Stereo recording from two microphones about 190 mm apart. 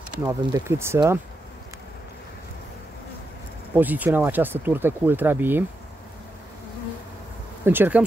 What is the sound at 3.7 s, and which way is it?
Speech, 10° right (ahead or behind).